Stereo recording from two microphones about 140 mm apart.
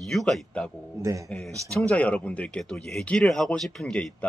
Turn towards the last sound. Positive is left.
turn(degrees=5)  # may be behind; listen again after turning